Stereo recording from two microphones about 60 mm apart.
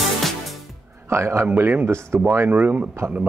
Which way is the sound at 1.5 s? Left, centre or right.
Right.